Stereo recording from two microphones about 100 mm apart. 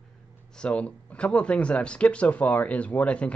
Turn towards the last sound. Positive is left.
turn(degrees=15)  # may be behind; listen again after turning